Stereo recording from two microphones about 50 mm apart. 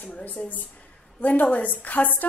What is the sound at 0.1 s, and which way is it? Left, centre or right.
A woman's voice, left.